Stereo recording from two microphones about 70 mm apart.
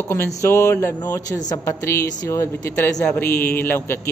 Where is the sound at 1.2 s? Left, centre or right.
Left.